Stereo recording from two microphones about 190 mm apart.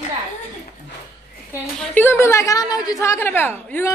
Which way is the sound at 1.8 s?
10° left (ahead or behind).